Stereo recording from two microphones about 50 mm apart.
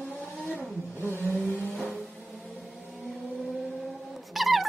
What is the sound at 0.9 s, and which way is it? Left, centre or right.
Vehicle, left.